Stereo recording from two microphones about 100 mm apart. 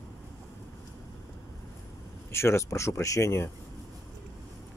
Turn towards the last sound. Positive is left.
turn(degrees=30)  # may be behind; listen again after turning